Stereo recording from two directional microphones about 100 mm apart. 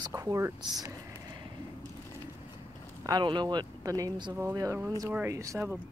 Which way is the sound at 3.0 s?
45° right (ahead or behind).